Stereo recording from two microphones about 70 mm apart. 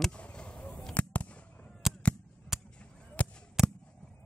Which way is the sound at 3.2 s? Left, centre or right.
Centre.